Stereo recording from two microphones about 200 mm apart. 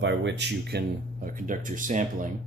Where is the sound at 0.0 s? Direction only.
60° right (ahead or behind).